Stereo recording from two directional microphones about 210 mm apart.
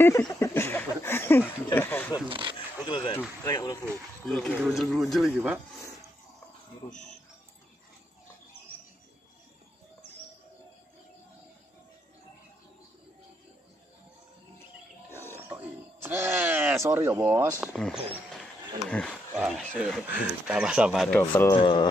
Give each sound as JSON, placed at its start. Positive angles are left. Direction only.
{"t": 0.0, "sound": "a sound", "side_deg": 15}
{"t": 2.2, "sound": "wild animals", "side_deg": -25}
{"t": 2.8, "sound": "a sound", "side_deg": 25}
{"t": 3.2, "sound": "speech", "side_deg": 15}
{"t": 4.3, "sound": "speech", "side_deg": 0}
{"t": 15.0, "sound": "wild animals", "side_deg": 10}
{"t": 15.3, "sound": "wail", "side_deg": -10}
{"t": 18.9, "sound": "speech", "side_deg": 5}
{"t": 19.3, "sound": "speech", "side_deg": -5}
{"t": 21.2, "sound": "speech", "side_deg": 10}
{"t": 21.5, "sound": "speech", "side_deg": 25}